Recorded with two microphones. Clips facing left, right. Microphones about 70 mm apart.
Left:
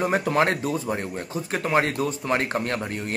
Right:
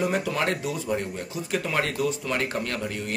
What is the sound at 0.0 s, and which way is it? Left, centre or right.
Speech, left.